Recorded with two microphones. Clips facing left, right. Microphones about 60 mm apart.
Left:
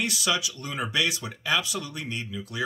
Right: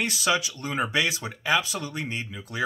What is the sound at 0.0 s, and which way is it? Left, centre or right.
Speech, right.